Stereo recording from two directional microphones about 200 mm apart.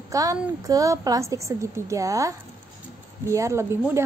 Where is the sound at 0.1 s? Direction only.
15° right (ahead or behind).